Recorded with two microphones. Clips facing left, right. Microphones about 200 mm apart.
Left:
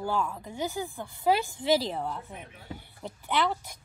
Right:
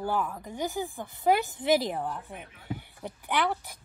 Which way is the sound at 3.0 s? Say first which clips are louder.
Left 1 dB; 15° right (ahead or behind).